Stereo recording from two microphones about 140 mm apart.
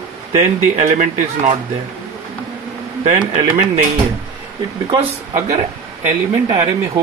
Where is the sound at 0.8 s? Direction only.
60° right (ahead or behind).